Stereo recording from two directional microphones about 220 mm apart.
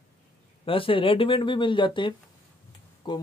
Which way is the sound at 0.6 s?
25° left (ahead or behind).